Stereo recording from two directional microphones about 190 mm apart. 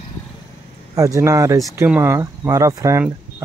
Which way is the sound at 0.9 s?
15° right (ahead or behind).